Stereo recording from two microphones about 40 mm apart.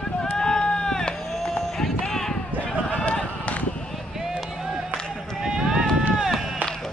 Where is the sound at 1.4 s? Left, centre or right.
Centre.